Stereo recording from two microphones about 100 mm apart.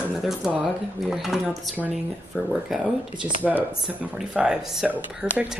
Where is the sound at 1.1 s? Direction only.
5° right (ahead or behind).